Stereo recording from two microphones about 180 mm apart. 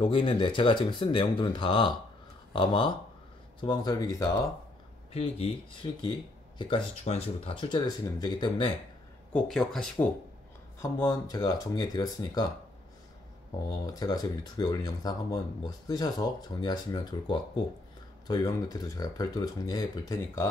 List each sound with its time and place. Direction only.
0.0 s speech: 30° left (ahead or behind)
5.1 s speech: 35° left (ahead or behind)
9.3 s speech: centre (ahead or behind)
10.8 s speech: 20° left (ahead or behind)
13.8 s speech: 20° left (ahead or behind)